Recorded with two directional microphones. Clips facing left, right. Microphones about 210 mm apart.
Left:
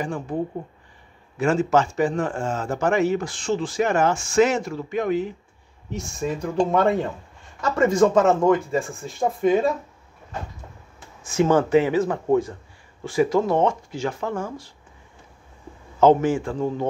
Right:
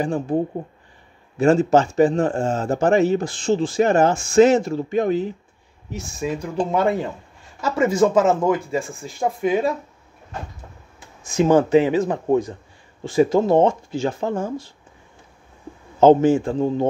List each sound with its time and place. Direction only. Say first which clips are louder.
0.0 s speech: right 6 dB; 30° right (ahead or behind)
1.4 s speech: right 4 dB; 30° right (ahead or behind)
5.9 s speech: right 1 dB; centre (ahead or behind)
11.2 s speech: right 3 dB; 15° right (ahead or behind)
16.0 s speech: right 4 dB; 25° right (ahead or behind)